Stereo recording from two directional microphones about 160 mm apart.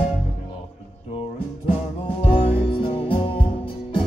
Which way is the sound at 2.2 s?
35° left (ahead or behind).